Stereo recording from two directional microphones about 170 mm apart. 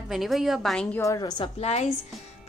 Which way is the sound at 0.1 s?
Centre (ahead or behind).